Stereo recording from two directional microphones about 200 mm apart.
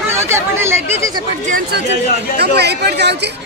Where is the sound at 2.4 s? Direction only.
55° right (ahead or behind).